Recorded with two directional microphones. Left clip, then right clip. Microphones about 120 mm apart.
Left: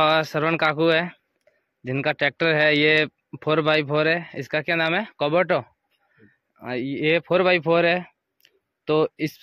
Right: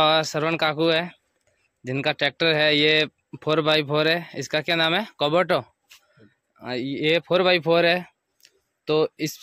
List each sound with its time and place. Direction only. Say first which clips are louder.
0.0 s speech: even; 20° right (ahead or behind)